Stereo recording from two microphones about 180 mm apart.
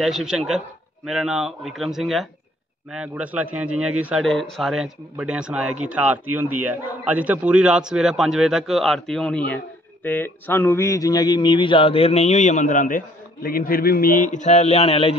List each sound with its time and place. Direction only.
0.0 s a man's voice: 5° right (ahead or behind); by 15.1 s 35° left (ahead or behind)